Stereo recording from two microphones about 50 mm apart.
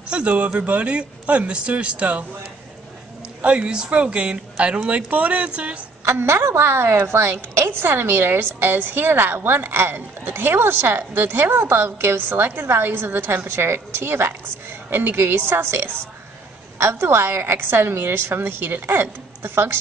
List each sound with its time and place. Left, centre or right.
0.1 s speech: right
3.4 s speech: right
6.0 s a woman's voice: right